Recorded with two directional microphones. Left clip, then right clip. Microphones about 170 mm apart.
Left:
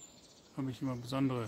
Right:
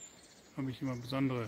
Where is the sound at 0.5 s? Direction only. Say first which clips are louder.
Even; 5° left (ahead or behind).